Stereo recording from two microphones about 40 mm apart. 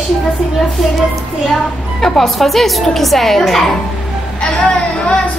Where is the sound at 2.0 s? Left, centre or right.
Centre.